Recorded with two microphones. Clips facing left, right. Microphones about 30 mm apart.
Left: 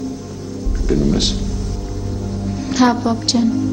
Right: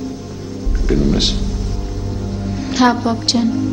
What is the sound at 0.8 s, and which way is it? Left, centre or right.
Speech, centre.